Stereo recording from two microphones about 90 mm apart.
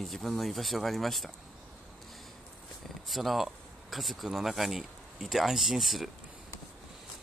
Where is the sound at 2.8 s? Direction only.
Centre (ahead or behind).